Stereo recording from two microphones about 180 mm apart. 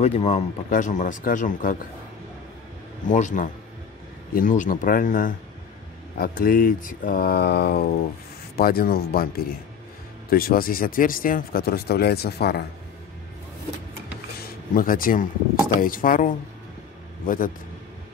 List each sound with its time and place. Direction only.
0.0 s speech: 35° left (ahead or behind)
3.1 s speech: 45° left (ahead or behind); by 12.6 s 65° left (ahead or behind)
14.4 s speech: 50° left (ahead or behind)